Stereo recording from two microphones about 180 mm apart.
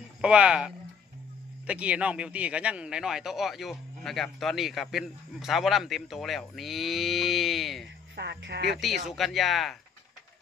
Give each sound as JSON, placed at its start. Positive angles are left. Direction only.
{"t": 0.2, "sound": "speech", "side_deg": -5}
{"t": 8.2, "sound": "speech", "side_deg": -70}
{"t": 8.7, "sound": "speech", "side_deg": 0}